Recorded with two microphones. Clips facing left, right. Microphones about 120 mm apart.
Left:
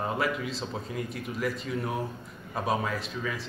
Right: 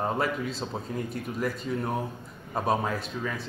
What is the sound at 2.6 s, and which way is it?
Speech, centre (ahead or behind).